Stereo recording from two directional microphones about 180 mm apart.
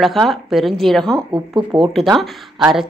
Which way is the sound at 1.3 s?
20° right (ahead or behind).